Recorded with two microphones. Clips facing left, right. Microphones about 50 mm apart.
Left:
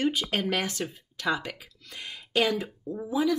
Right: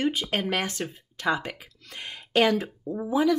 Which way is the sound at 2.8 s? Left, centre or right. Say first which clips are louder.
Right 3 dB; centre.